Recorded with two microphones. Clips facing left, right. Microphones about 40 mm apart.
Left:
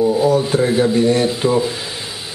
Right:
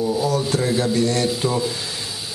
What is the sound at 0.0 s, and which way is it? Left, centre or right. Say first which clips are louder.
Speech: left 6 dB; centre.